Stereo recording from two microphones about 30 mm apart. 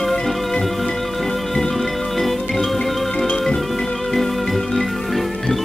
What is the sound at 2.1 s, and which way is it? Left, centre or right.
Music, centre.